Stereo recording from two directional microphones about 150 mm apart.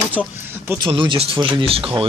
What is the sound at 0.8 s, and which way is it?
Speech, 35° right (ahead or behind).